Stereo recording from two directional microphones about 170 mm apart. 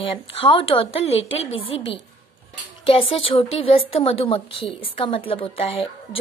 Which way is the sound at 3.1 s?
35° left (ahead or behind).